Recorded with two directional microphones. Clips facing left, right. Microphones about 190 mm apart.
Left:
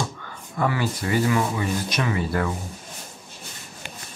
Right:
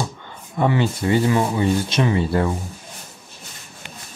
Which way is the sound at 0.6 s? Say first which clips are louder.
Right 5 dB; 25° right (ahead or behind).